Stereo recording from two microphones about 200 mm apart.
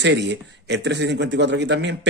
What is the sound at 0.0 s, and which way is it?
Speech, 60° right (ahead or behind).